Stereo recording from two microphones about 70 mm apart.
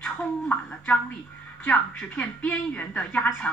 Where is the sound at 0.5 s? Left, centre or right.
Left.